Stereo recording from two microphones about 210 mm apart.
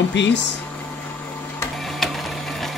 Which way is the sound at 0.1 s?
55° left (ahead or behind).